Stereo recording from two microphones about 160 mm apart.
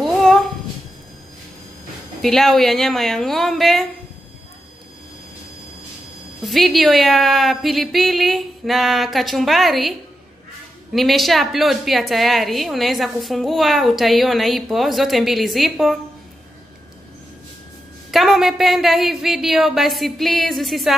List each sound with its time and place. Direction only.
0.0 s a sound: centre (ahead or behind)
2.2 s a woman's voice: centre (ahead or behind)
6.4 s a woman's voice: centre (ahead or behind)
18.1 s a woman's voice: centre (ahead or behind)